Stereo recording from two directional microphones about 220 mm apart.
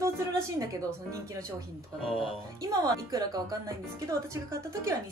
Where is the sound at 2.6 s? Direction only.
15° right (ahead or behind).